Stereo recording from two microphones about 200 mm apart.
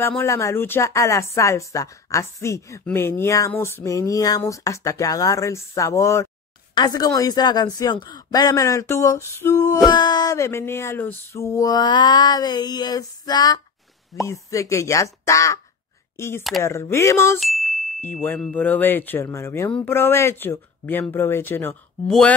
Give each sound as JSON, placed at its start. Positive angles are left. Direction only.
{"t": 0.0, "sound": "speech", "side_deg": 10}
{"t": 6.7, "sound": "a sound", "side_deg": 20}
{"t": 8.1, "sound": "speech", "side_deg": 20}
{"t": 9.8, "sound": "a sound", "side_deg": 20}
{"t": 14.2, "sound": "speech", "side_deg": 15}
{"t": 17.4, "sound": "speech", "side_deg": 0}